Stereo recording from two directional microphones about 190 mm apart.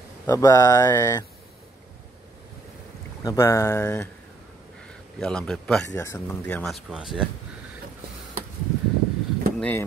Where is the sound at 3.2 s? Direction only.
15° left (ahead or behind).